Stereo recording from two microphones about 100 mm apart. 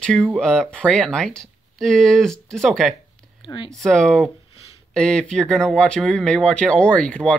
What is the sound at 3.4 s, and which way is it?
Speech, 60° left (ahead or behind).